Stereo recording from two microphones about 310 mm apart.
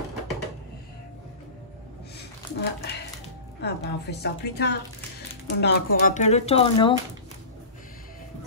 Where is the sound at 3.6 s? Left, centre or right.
Left; by 7.0 s centre.